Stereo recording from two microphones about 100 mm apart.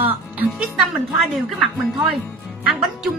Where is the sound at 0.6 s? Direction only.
Centre (ahead or behind).